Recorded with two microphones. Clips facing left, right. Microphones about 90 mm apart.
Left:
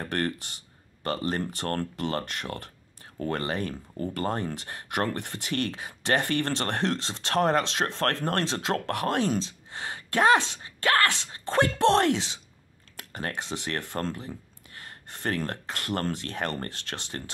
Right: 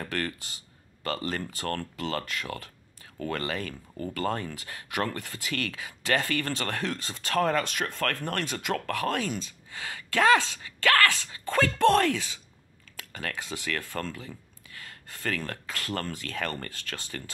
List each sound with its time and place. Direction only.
0.0 s speech: 30° left (ahead or behind)
5.5 s speech: 25° left (ahead or behind)
10.8 s a sound: 20° left (ahead or behind)
11.4 s speech: 25° left (ahead or behind)
14.0 s a sound: 35° left (ahead or behind)
15.7 s speech: 20° left (ahead or behind)